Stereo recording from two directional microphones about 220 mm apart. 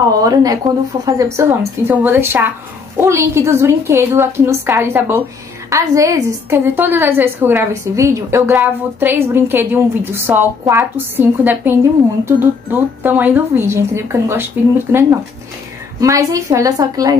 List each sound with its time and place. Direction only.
0.2 s a woman's voice: 15° right (ahead or behind)